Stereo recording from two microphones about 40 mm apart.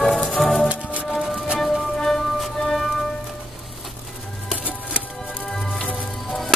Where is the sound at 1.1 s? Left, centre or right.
Centre.